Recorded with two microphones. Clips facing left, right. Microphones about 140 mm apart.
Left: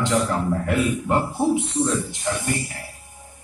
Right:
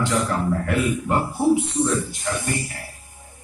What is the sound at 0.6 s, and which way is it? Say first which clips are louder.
A man's voice: even; 20° left (ahead or behind).